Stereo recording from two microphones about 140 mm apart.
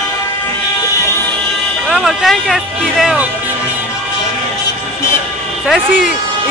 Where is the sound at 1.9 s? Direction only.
5° right (ahead or behind).